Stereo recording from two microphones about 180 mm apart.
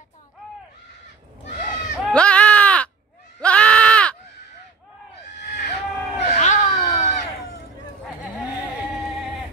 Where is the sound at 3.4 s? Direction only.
5° left (ahead or behind).